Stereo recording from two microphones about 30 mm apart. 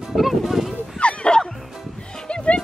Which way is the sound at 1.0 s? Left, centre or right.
Left.